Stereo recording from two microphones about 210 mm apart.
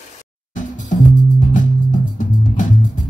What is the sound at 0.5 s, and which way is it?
Music, 35° left (ahead or behind).